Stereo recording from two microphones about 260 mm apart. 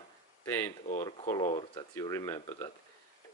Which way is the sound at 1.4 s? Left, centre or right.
Left.